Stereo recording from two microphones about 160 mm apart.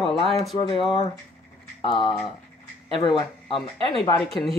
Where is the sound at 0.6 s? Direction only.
35° left (ahead or behind).